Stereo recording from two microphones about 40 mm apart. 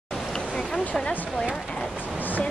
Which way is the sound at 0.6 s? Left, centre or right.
Centre.